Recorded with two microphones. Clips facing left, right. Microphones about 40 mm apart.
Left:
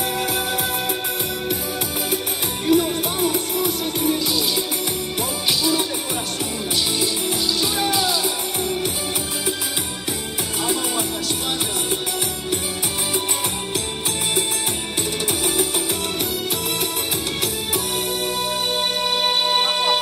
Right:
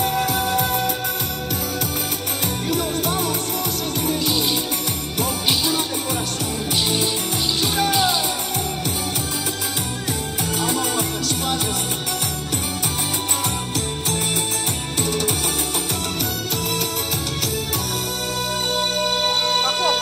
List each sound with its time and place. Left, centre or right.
0.0 s music: centre
2.7 s music: centre
5.5 s music: centre
7.6 s music: centre
7.9 s music: centre
10.6 s music: centre
18.8 s music: centre